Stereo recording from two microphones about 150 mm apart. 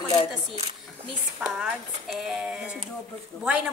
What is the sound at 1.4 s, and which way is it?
Speech, 5° right (ahead or behind).